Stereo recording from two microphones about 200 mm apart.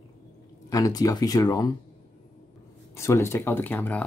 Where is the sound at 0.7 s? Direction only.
20° left (ahead or behind).